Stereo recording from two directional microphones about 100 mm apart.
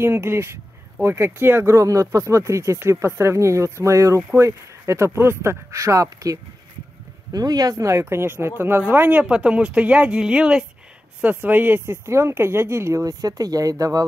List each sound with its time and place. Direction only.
0.0 s speech: 25° right (ahead or behind)
4.2 s speech: 20° right (ahead or behind); by 14.0 s 35° right (ahead or behind)